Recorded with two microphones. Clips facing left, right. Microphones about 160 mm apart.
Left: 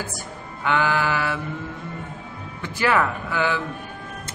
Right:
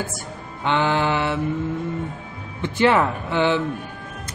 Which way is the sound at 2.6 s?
25° right (ahead or behind).